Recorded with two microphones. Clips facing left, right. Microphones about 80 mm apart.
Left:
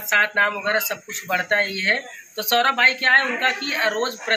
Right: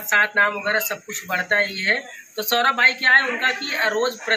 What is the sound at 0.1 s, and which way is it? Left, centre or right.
Speech, right.